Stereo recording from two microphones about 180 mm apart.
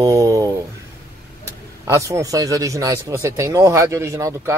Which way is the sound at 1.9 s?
15° right (ahead or behind).